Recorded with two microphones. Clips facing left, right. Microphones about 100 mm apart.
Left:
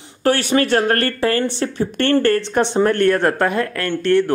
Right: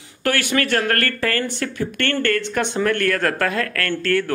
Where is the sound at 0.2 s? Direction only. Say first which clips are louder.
Left 4 dB; 25° left (ahead or behind).